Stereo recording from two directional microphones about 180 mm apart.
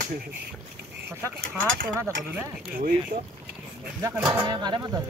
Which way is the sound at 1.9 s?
10° right (ahead or behind).